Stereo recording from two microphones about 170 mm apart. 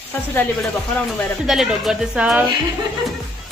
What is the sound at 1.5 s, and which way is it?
Speech, centre (ahead or behind).